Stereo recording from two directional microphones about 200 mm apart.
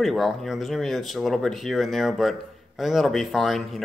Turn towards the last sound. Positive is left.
turn(degrees=0)  # may be behind; listen again after turning